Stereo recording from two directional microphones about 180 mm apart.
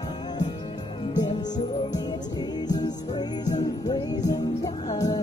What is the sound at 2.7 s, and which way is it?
Music, 20° left (ahead or behind).